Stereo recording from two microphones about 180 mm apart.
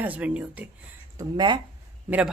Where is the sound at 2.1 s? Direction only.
10° right (ahead or behind).